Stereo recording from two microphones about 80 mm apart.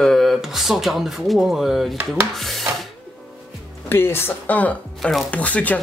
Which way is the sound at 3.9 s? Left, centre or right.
Left.